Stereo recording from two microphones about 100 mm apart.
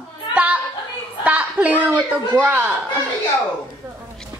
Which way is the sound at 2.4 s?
15° right (ahead or behind).